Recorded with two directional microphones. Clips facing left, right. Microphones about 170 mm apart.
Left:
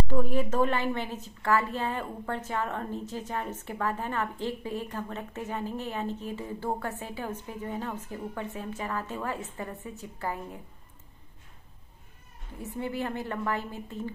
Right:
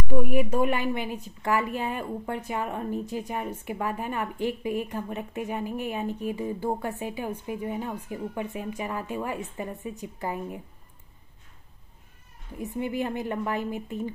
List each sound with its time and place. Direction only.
0.1 s a woman's voice: 10° right (ahead or behind)
12.5 s a woman's voice: 15° right (ahead or behind)